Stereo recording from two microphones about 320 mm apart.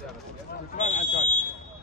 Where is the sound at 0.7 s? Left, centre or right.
Left.